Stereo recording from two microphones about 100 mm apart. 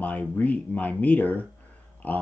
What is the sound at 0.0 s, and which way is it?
Speech, 15° left (ahead or behind).